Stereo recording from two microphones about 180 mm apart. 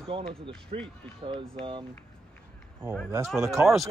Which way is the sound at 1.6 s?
30° right (ahead or behind).